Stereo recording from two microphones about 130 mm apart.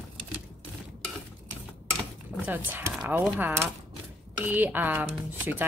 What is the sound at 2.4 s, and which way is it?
Speech, 15° right (ahead or behind).